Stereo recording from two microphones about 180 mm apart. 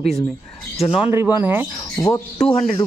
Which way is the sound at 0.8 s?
30° left (ahead or behind).